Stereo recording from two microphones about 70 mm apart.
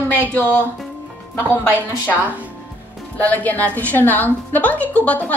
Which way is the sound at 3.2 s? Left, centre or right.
Left.